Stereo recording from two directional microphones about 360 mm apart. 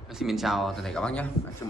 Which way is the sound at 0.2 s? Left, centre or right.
Centre.